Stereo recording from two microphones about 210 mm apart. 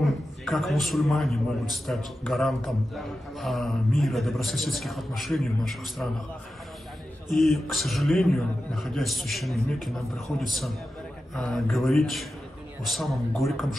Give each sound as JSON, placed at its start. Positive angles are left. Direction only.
{"t": 0.0, "sound": "a man's voice", "side_deg": 0}
{"t": 7.3, "sound": "a man's voice", "side_deg": 0}